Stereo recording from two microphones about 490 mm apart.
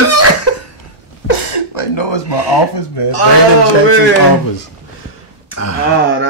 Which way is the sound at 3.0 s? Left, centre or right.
Left.